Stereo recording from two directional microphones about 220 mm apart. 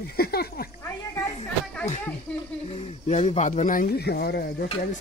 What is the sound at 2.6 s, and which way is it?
Speech, 25° left (ahead or behind).